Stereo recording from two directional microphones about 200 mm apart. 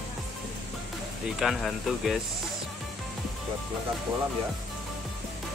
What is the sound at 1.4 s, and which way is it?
Speech, centre (ahead or behind).